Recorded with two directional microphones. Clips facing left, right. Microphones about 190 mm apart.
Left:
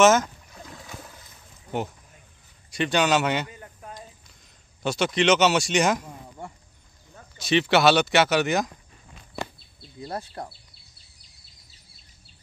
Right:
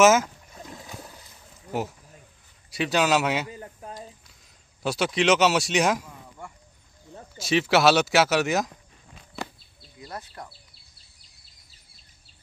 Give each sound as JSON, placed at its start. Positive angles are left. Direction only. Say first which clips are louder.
{"t": 0.0, "sound": "a sound", "louder": "even", "side_deg": -5}
{"t": 1.7, "sound": "speech", "louder": "even", "side_deg": -5}
{"t": 3.4, "sound": "a sound", "louder": "right 4 dB", "side_deg": -30}
{"t": 4.8, "sound": "speech", "louder": "left 1 dB", "side_deg": -5}
{"t": 7.3, "sound": "speech", "louder": "left 1 dB", "side_deg": -5}
{"t": 9.9, "sound": "speech", "louder": "left 5 dB", "side_deg": 30}